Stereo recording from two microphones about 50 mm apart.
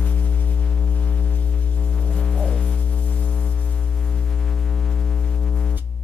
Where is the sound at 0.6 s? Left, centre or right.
Centre.